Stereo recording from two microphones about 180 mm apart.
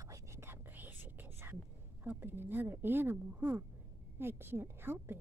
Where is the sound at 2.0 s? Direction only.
10° right (ahead or behind).